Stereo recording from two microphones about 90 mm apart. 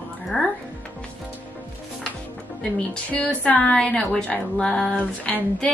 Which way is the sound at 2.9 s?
10° left (ahead or behind).